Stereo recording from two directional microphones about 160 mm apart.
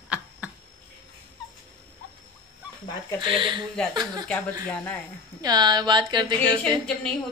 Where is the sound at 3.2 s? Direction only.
30° right (ahead or behind).